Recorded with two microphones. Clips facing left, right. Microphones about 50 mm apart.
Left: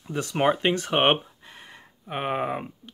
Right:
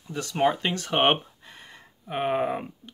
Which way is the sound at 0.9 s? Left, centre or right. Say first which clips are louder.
Right 2 dB; centre.